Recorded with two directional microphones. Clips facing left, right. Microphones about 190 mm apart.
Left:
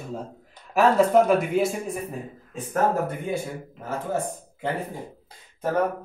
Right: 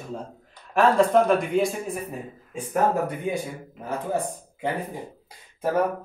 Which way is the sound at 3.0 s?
15° right (ahead or behind).